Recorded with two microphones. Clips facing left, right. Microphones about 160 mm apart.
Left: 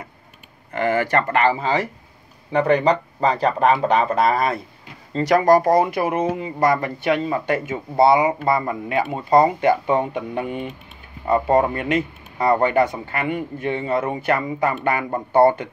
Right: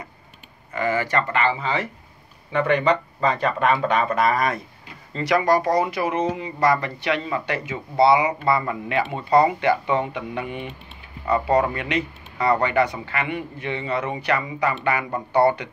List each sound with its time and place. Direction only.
0.7 s speech: 55° left (ahead or behind); by 4.6 s 30° left (ahead or behind)
5.1 s speech: 40° left (ahead or behind)